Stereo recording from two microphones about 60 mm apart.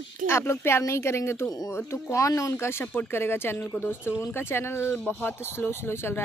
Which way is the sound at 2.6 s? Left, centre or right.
Left.